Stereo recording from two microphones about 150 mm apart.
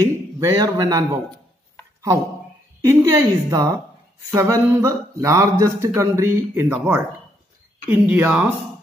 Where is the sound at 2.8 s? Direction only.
20° right (ahead or behind).